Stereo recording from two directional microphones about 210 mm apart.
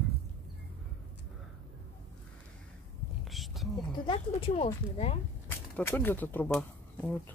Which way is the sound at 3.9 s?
25° left (ahead or behind).